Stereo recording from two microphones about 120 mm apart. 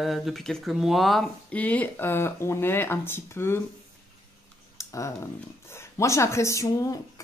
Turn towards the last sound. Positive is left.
turn(degrees=25)  # may be behind; listen again after turning